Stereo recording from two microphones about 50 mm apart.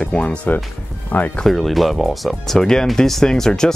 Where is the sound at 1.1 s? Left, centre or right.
Left.